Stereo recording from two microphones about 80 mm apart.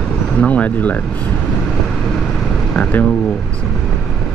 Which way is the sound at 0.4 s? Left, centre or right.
Centre.